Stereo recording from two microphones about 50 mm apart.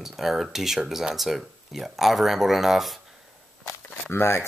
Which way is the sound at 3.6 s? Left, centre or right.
Left.